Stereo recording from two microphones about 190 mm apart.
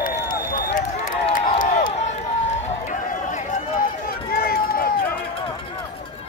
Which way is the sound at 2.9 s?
40° left (ahead or behind).